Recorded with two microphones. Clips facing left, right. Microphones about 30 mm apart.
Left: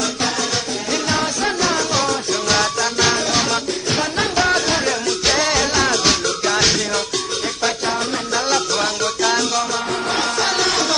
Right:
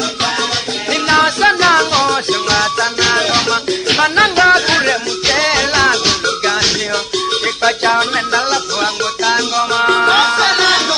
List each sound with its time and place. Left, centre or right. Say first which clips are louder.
1.0 s music: right 12 dB; right
2.5 s music: right 3 dB; right
3.9 s music: right 10 dB; right
4.4 s music: right 6 dB; right
4.6 s music: right 6 dB; right
5.3 s music: right 6 dB; right
7.6 s music: right 8 dB; right
9.2 s music: right 5 dB; right
9.8 s music: right 10 dB; right
10.3 s music: right 7 dB; right